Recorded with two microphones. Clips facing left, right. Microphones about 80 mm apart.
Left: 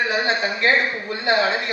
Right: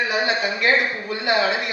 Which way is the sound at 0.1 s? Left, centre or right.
Left.